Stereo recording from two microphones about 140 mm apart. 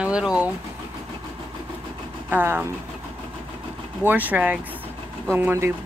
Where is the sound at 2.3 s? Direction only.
15° right (ahead or behind).